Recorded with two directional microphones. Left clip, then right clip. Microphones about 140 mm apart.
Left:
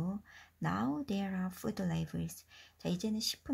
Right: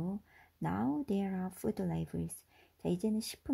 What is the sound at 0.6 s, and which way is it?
Speech, 40° right (ahead or behind).